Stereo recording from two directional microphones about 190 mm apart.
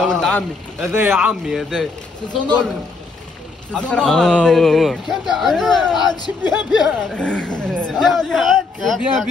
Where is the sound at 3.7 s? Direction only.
5° left (ahead or behind).